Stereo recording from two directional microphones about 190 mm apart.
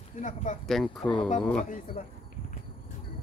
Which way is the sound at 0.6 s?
Centre (ahead or behind).